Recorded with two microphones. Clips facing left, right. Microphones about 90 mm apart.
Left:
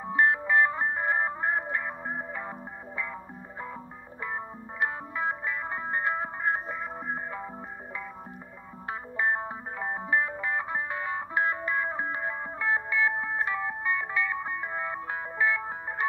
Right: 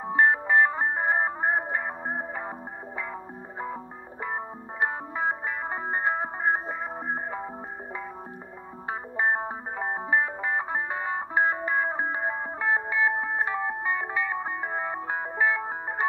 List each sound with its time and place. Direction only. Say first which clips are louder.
0.0 s music: right 2 dB; 30° right (ahead or behind)
4.2 s music: right 3 dB; 30° right (ahead or behind)
8.8 s music: right 2 dB; 25° right (ahead or behind)